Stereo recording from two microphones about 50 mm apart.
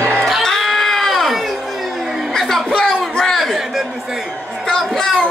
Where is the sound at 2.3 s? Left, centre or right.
Centre.